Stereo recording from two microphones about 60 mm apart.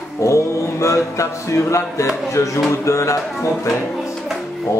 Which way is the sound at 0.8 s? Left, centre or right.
Left.